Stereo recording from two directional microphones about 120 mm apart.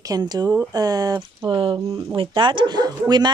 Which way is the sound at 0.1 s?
35° right (ahead or behind).